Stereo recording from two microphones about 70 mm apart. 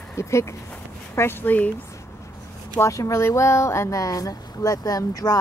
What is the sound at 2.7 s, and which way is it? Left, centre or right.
Speech, left.